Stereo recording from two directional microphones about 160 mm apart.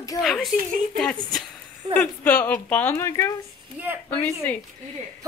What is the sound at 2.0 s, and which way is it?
Speech, 10° left (ahead or behind).